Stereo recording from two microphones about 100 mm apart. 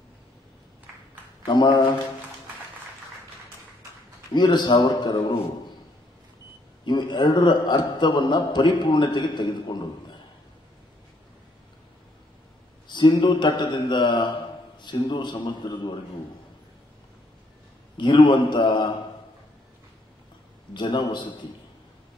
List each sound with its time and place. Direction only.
1.5 s a man's voice: 50° left (ahead or behind)
4.3 s a man's voice: 50° left (ahead or behind)
6.8 s a man's voice: 50° left (ahead or behind)
12.8 s a man's voice: 50° left (ahead or behind)
17.9 s a man's voice: 50° left (ahead or behind)
20.7 s a man's voice: 50° left (ahead or behind)